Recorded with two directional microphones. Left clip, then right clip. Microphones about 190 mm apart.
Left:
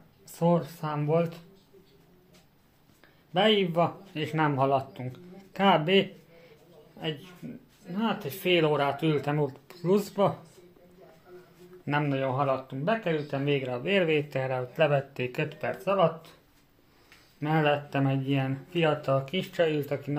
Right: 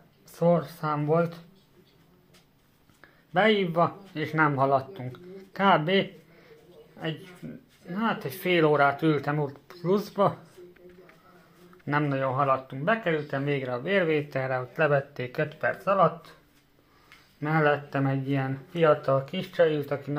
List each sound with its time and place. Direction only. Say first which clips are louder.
0.3 s speech: right 3 dB; 10° left (ahead or behind)
3.3 s speech: right 1 dB; centre (ahead or behind)
7.9 s speech: right 2 dB; centre (ahead or behind); by 10.1 s 15° left (ahead or behind)
11.8 s speech: right 2 dB; 10° left (ahead or behind)
17.4 s speech: right 2 dB; 10° left (ahead or behind)